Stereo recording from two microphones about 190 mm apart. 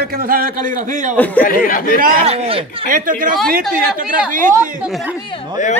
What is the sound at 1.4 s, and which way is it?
Speech, 50° left (ahead or behind).